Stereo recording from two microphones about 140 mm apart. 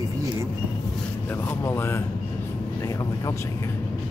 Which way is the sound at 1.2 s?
15° left (ahead or behind).